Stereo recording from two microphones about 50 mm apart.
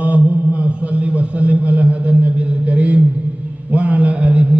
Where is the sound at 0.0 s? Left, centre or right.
Right.